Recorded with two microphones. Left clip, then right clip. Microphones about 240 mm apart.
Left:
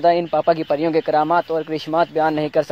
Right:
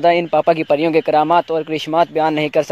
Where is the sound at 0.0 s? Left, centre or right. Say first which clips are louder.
Right 3 dB; right.